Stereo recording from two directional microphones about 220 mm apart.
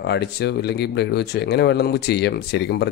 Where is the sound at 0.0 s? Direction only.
50° left (ahead or behind).